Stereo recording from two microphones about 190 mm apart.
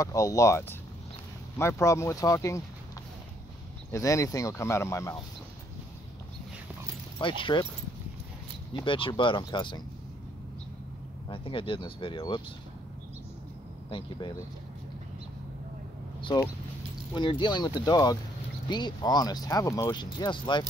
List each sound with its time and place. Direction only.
0.0 s speech: 15° left (ahead or behind)
3.9 s speech: 15° left (ahead or behind)
7.2 s speech: 25° left (ahead or behind)
8.8 s speech: 25° left (ahead or behind)
11.2 s speech: 25° left (ahead or behind)
13.8 s speech: 25° left (ahead or behind)
17.1 s speech: 25° left (ahead or behind)